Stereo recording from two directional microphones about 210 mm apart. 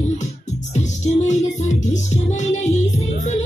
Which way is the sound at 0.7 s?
35° left (ahead or behind).